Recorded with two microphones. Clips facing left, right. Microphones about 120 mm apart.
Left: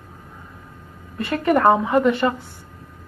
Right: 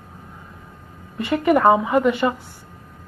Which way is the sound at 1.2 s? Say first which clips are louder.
Right 1 dB; 15° right (ahead or behind).